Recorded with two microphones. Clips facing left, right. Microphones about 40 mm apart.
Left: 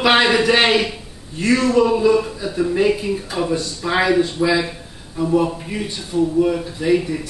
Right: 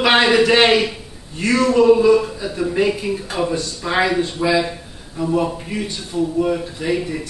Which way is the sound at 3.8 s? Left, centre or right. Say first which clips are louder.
Left 1 dB; centre.